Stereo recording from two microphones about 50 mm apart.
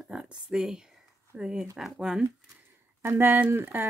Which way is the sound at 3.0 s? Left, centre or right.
Right.